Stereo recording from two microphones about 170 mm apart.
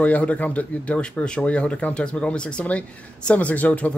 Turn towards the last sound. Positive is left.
turn(degrees=10)  # may be behind; listen again after turning